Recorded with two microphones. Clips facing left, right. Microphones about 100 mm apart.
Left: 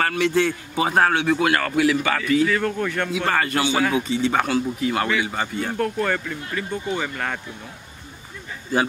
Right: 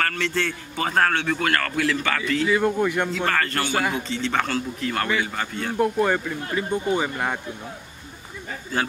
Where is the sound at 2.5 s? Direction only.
15° right (ahead or behind).